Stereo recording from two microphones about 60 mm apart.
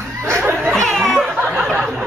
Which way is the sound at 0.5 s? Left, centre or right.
Right.